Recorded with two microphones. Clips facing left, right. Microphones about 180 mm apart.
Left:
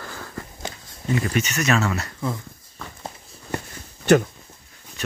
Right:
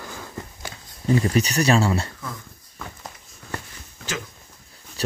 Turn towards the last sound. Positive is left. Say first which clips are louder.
# left 16 dB
turn(degrees=65)  # may be behind; listen again after turning